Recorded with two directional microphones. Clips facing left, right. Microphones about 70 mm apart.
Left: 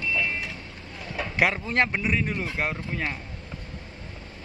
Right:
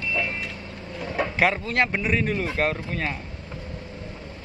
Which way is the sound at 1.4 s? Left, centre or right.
Centre.